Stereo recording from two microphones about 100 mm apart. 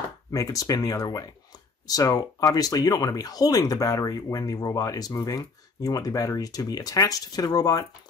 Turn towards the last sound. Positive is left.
turn(degrees=40)  # may be behind; listen again after turning